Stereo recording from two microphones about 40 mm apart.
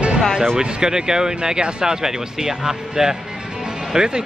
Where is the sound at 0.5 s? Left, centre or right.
Centre.